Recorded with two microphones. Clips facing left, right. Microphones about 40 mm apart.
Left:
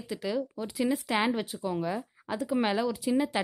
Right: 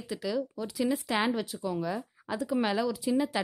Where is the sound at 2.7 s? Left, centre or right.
Centre.